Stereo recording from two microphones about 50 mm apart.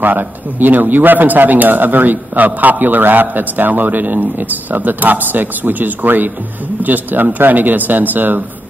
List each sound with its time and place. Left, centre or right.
0.0 s a man's voice: right